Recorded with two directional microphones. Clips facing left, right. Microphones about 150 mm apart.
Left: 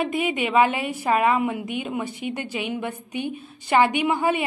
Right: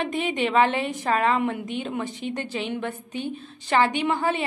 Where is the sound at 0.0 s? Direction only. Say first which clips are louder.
Left 1 dB; 10° left (ahead or behind).